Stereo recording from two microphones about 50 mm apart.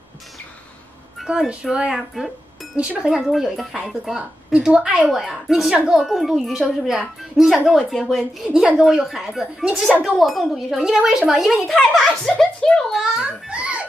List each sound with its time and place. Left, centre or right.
1.5 s a woman's voice: centre
2.1 s music: centre
3.0 s a woman's voice: centre
3.3 s a woman's voice: centre
4.7 s a woman's voice: right
5.0 s a woman's voice: centre
11.7 s a child's voice: centre
12.9 s a woman's voice: centre
13.5 s giggle: right